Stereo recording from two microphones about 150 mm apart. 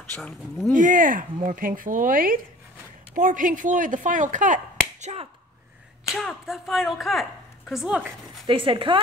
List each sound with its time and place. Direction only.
0.7 s speech: 65° right (ahead or behind)
5.0 s speech: 45° right (ahead or behind)
6.1 s speech: centre (ahead or behind)
8.5 s speech: 35° right (ahead or behind)